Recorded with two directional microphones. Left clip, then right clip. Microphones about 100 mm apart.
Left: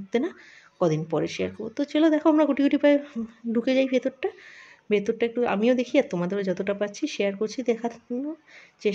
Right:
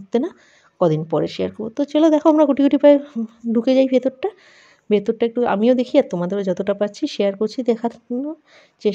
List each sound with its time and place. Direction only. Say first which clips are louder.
0.1 s speech: right 5 dB; 25° right (ahead or behind)
2.0 s speech: right 7 dB; 40° right (ahead or behind)
2.3 s speech: right 6 dB; 30° right (ahead or behind)